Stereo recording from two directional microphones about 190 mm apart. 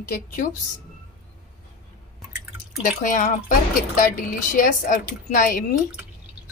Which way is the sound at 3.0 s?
45° left (ahead or behind).